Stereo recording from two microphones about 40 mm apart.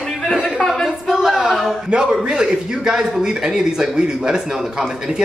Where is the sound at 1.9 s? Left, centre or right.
Right.